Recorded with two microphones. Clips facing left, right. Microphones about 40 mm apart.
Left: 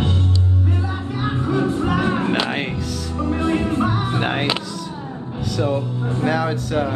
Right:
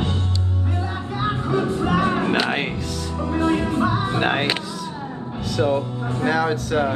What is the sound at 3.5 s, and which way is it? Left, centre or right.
Music, left.